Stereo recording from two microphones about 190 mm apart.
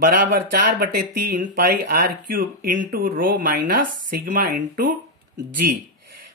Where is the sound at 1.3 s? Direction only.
45° right (ahead or behind).